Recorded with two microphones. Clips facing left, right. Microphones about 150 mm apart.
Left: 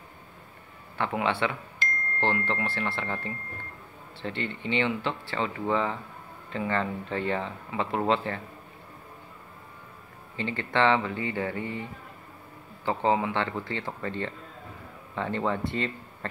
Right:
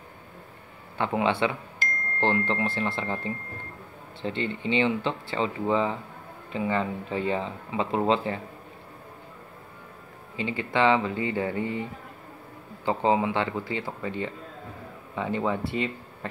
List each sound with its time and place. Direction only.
0.9 s speech: 15° right (ahead or behind)
10.3 s speech: 10° right (ahead or behind)
12.8 s speech: 20° right (ahead or behind)